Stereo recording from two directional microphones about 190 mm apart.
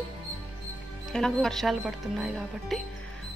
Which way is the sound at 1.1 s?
5° left (ahead or behind).